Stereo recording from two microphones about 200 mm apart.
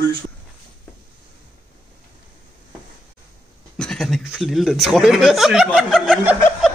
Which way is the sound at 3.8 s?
5° left (ahead or behind).